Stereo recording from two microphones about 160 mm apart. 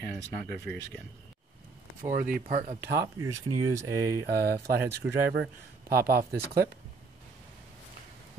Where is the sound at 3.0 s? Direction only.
20° right (ahead or behind).